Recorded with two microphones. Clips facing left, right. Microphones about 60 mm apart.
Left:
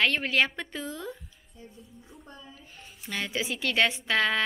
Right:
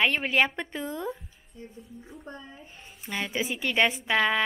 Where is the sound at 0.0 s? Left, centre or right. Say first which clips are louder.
Right 1 dB; centre.